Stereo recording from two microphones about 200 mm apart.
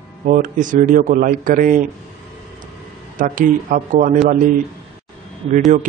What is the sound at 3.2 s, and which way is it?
A man's voice, 40° right (ahead or behind).